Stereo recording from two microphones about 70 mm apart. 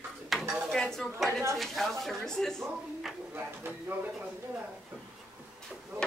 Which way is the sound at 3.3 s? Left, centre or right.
Right.